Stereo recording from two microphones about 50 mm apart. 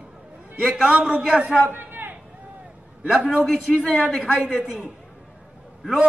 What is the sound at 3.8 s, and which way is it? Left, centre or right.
Speech, left.